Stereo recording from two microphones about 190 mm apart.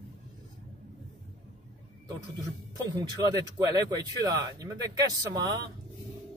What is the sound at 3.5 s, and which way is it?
Speech, 20° right (ahead or behind).